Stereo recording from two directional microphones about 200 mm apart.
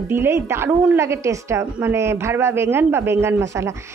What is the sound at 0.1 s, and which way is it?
A woman's voice, 15° right (ahead or behind).